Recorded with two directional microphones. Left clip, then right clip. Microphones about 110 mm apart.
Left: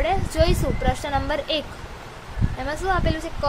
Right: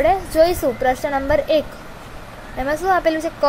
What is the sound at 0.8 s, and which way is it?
Speech, 30° right (ahead or behind).